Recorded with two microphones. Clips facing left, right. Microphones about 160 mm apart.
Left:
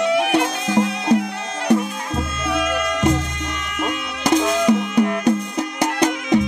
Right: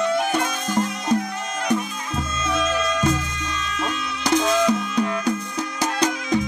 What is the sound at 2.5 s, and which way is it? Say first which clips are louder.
Music: left 1 dB; 65° left (ahead or behind).